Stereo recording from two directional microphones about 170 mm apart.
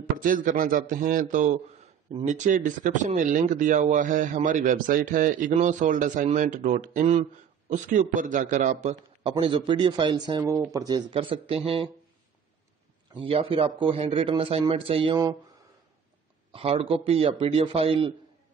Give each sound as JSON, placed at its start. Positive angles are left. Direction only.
{"t": 0.0, "sound": "a man's voice", "side_deg": -50}
{"t": 9.3, "sound": "a man's voice", "side_deg": -30}
{"t": 13.1, "sound": "a man's voice", "side_deg": -35}
{"t": 16.5, "sound": "a man's voice", "side_deg": -35}